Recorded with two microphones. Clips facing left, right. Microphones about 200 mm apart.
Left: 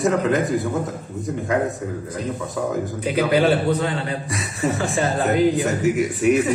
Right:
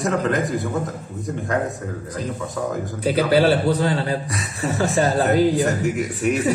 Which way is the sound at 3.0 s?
35° right (ahead or behind).